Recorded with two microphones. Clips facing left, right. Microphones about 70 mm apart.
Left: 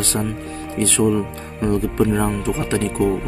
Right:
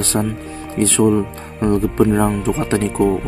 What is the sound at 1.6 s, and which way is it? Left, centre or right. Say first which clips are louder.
Speech: right 3 dB; right.